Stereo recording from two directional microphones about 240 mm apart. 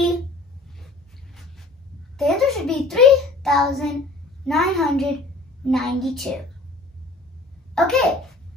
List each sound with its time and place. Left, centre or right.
0.7 s a sound: centre
4.5 s a child's voice: centre
7.7 s a child's voice: centre